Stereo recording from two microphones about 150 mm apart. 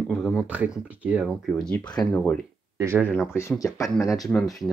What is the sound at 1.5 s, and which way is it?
Speech, 5° left (ahead or behind).